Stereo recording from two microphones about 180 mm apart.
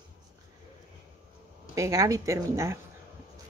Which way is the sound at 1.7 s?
15° right (ahead or behind).